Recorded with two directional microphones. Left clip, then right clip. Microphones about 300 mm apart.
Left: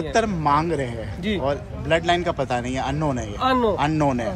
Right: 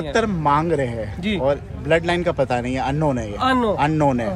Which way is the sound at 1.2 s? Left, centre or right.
Right.